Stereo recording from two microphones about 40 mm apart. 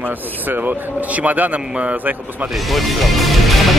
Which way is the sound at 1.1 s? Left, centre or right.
Right.